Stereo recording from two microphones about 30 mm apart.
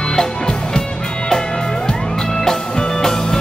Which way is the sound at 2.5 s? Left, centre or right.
Centre.